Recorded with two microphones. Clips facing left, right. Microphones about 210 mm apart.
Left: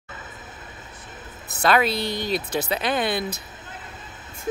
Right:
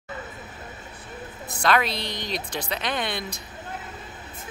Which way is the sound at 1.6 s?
5° left (ahead or behind).